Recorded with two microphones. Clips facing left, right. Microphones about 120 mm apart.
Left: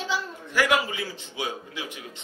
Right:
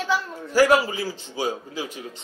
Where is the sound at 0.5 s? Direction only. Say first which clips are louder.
Right 6 dB; 35° right (ahead or behind).